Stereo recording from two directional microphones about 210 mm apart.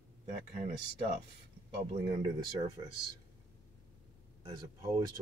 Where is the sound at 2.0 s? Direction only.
20° right (ahead or behind).